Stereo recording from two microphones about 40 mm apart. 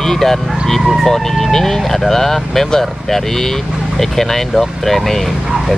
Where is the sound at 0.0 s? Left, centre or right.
Centre.